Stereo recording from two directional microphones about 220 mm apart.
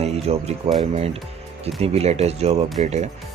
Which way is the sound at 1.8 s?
30° right (ahead or behind).